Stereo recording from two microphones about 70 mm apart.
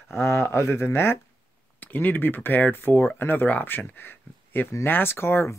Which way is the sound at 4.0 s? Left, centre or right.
Left.